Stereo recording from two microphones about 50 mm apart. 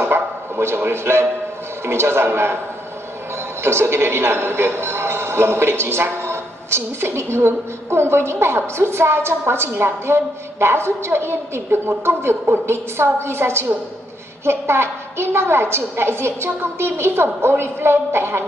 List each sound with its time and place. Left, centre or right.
0.0 s a man's voice: right
3.6 s a man's voice: right